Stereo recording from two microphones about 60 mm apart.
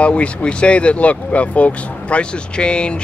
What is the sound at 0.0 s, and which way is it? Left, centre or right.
Speech, left.